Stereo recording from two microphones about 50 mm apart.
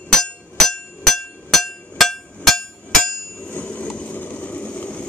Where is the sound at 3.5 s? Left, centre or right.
Left.